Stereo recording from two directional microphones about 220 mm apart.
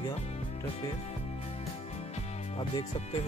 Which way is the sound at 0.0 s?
25° left (ahead or behind).